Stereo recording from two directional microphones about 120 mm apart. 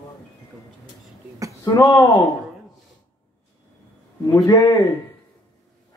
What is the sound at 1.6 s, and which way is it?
Speech, 30° left (ahead or behind).